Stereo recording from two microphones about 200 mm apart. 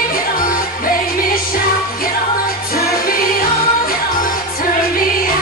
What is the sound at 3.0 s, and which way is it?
Music, 45° left (ahead or behind).